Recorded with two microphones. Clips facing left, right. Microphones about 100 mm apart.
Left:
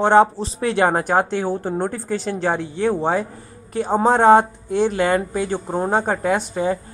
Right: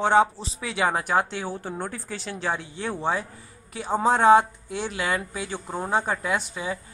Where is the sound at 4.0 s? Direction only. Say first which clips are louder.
Left 4 dB; 55° left (ahead or behind).